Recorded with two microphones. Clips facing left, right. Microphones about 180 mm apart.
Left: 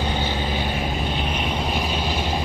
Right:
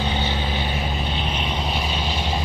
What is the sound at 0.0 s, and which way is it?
Vehicle, 10° left (ahead or behind).